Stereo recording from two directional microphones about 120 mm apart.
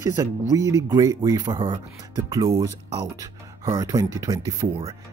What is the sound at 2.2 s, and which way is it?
Speech, 25° right (ahead or behind).